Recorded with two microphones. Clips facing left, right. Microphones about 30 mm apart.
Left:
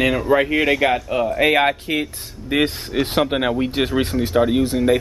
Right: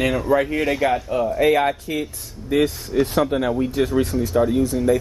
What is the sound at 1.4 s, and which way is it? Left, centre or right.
Speech, left.